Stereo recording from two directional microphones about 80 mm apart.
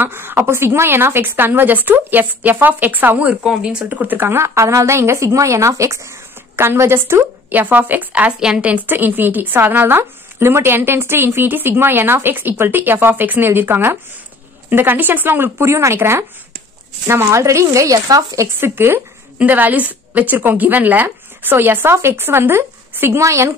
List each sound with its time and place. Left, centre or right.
0.0 s a woman's voice: right
18.6 s a woman's voice: right